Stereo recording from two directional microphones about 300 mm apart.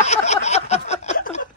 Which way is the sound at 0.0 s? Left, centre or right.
Left.